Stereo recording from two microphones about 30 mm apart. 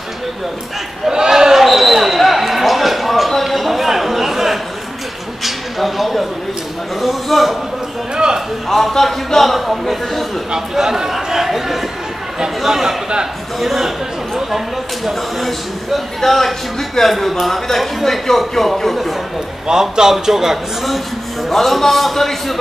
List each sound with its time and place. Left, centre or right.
1.1 s a sound: centre
1.6 s basketball bounce: centre
2.1 s a sound: centre
8.6 s a man's voice: centre
10.7 s a man's voice: centre
13.6 s a man's voice: centre
15.0 s a man's voice: centre
19.7 s a man's voice: centre
21.5 s a man's voice: centre